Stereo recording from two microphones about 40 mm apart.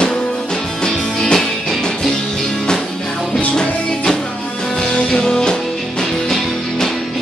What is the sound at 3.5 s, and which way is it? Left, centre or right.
Music, centre.